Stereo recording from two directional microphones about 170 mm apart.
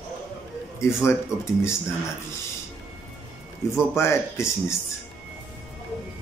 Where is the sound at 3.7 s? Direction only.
15° left (ahead or behind).